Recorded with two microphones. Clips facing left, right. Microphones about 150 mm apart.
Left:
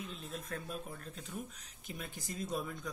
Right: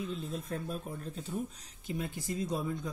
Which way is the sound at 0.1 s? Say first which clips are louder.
Right 6 dB; 35° right (ahead or behind).